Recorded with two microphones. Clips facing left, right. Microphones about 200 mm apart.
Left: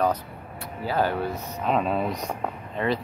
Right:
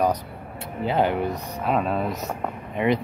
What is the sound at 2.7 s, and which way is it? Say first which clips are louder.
Speech: right 4 dB; 15° right (ahead or behind).